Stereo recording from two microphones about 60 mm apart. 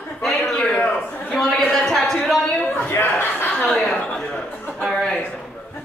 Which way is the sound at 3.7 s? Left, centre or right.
Centre.